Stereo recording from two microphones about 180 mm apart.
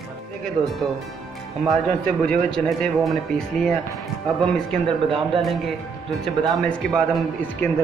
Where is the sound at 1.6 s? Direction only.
5° left (ahead or behind).